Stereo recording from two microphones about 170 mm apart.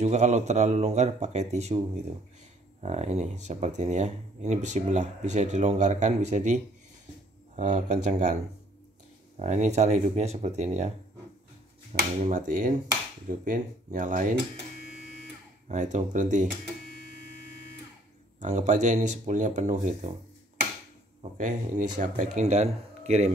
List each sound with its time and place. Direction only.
0.0 s speech: 40° right (ahead or behind)
2.8 s speech: 40° right (ahead or behind)
9.4 s speech: 45° right (ahead or behind)
11.9 s speech: 50° right (ahead or behind)
15.7 s speech: 45° right (ahead or behind)
18.4 s speech: 45° right (ahead or behind)
21.2 s speech: 50° right (ahead or behind)